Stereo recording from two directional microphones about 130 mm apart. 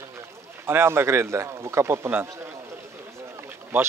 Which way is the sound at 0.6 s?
20° right (ahead or behind).